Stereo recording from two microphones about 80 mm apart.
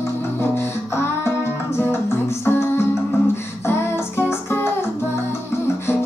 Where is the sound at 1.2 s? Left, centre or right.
Left.